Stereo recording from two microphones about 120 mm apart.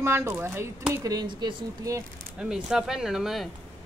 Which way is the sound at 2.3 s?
5° right (ahead or behind).